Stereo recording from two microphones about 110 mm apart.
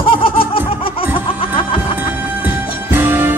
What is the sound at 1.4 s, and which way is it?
Music, 55° left (ahead or behind).